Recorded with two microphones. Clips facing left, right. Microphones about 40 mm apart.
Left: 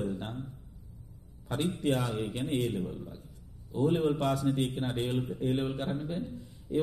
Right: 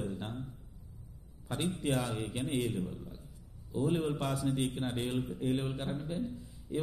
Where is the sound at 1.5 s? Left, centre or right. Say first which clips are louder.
Left 3 dB; left.